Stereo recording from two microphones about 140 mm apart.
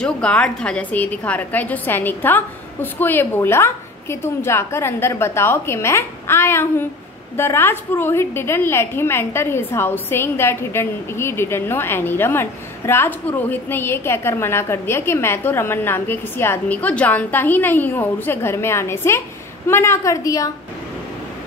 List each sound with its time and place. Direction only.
0.0 s a woman's voice: 10° left (ahead or behind); by 20.5 s 25° left (ahead or behind)